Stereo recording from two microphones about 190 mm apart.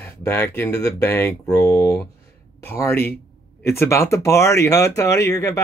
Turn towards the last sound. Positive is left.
turn(degrees=15)  # may be behind; listen again after turning